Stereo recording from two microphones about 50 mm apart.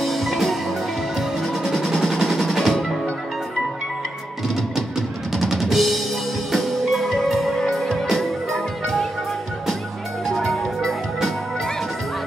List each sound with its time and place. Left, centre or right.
0.0 s music: centre
5.4 s drum kit: centre
6.5 s music: centre
10.2 s music: centre